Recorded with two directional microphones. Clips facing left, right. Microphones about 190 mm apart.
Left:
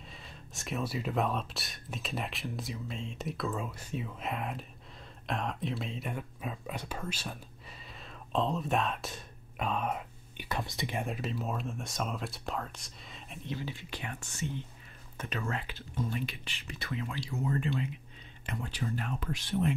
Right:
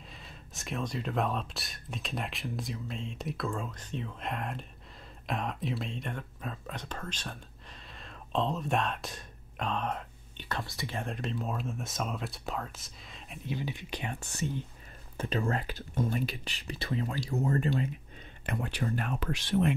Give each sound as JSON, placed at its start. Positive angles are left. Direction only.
{"t": 0.1, "sound": "speech", "side_deg": 0}
{"t": 11.1, "sound": "speech", "side_deg": 5}
{"t": 13.6, "sound": "speech", "side_deg": -15}
{"t": 15.1, "sound": "speech", "side_deg": -30}
{"t": 18.4, "sound": "speech", "side_deg": -60}